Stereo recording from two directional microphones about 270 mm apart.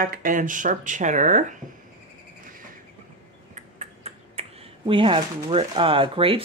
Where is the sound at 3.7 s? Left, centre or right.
Right.